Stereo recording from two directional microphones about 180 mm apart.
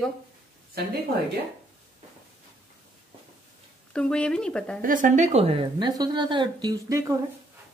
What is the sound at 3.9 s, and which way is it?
Speech, 5° left (ahead or behind).